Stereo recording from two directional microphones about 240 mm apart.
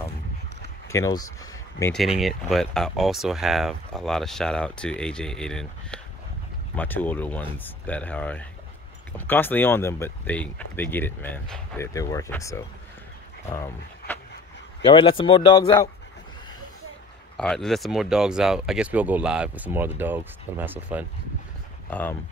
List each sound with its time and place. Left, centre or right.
0.9 s speech: centre
2.0 s speech: centre
14.8 s speech: left
17.4 s speech: centre